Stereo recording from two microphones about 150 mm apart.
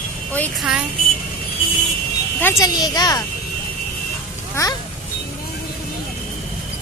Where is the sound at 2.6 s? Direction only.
25° left (ahead or behind).